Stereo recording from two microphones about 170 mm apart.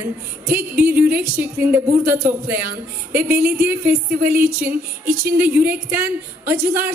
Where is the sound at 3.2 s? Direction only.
65° right (ahead or behind).